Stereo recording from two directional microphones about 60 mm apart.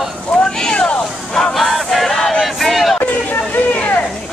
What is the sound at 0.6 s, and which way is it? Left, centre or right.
Vehicle, centre.